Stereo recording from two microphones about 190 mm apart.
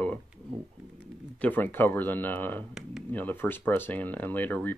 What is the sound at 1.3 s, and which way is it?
Speech, 10° left (ahead or behind).